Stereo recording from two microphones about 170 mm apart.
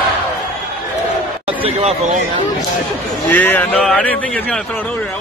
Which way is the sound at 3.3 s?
10° left (ahead or behind).